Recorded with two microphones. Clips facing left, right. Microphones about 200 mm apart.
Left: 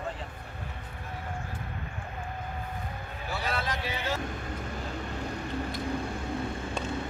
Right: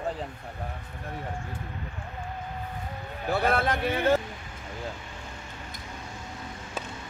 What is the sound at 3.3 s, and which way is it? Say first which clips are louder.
Speech: right 8 dB; 55° right (ahead or behind).